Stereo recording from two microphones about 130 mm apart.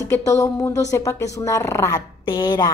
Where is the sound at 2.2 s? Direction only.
35° left (ahead or behind).